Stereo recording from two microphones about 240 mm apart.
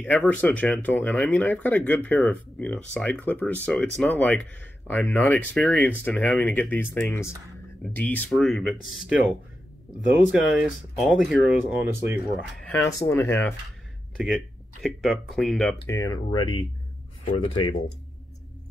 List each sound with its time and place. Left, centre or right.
0.0 s speech: centre
12.6 s speech: centre
14.1 s speech: centre
16.0 s speech: centre